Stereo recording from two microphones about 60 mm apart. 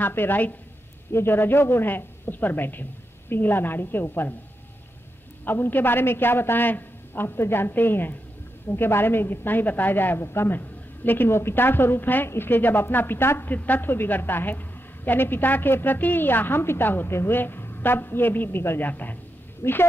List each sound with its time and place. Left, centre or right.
0.0 s a woman's voice: left
5.4 s a woman's voice: left
13.5 s a woman's voice: left
19.6 s a woman's voice: left